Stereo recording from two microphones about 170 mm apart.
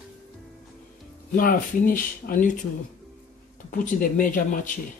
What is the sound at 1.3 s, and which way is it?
Speech, 55° left (ahead or behind).